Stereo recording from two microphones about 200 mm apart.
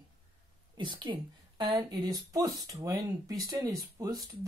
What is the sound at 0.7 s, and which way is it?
Speech, 25° right (ahead or behind).